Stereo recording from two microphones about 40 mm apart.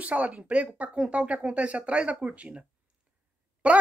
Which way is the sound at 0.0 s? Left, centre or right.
Right.